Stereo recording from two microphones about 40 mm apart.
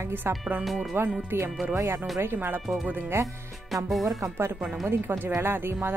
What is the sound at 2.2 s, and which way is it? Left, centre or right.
Speech, right.